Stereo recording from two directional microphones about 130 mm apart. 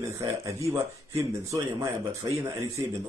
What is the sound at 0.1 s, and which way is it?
Speech, 25° right (ahead or behind).